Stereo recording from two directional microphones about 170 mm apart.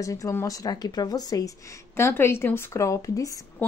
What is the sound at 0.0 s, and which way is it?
A woman's voice, 20° left (ahead or behind).